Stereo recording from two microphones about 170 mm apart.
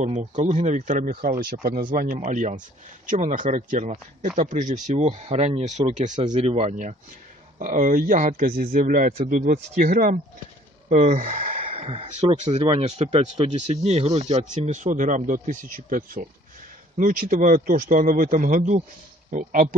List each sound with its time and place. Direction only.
0.0 s speech: 40° right (ahead or behind)